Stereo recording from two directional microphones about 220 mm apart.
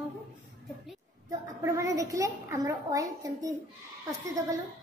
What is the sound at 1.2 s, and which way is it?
A woman's voice, 15° right (ahead or behind).